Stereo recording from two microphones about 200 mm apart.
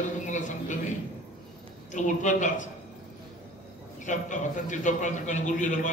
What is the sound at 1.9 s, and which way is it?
Speech, 40° left (ahead or behind).